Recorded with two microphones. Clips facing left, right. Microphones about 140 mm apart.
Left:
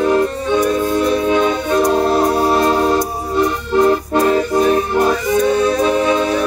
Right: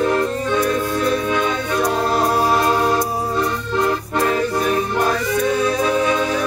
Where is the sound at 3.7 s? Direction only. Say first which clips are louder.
Left 8 dB; 30° left (ahead or behind).